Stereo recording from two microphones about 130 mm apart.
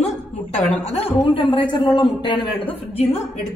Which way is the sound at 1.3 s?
40° left (ahead or behind).